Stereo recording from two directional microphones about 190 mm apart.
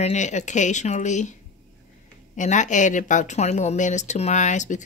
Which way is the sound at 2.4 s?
40° left (ahead or behind).